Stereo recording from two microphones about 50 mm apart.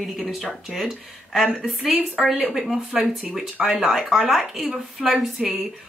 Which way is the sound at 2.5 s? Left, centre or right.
Centre.